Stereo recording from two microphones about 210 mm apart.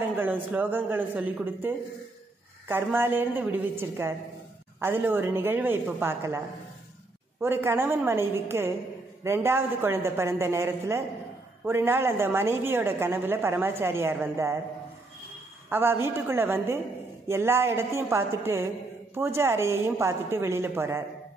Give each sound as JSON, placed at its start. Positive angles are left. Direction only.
{"t": 0.2, "sound": "a woman's voice", "side_deg": -10}
{"t": 2.7, "sound": "a woman's voice", "side_deg": -10}
{"t": 7.4, "sound": "a woman's voice", "side_deg": -10}
{"t": 15.7, "sound": "a woman's voice", "side_deg": -10}